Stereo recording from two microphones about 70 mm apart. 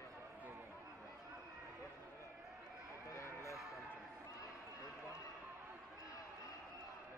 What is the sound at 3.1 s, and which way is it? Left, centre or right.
Vehicle, left.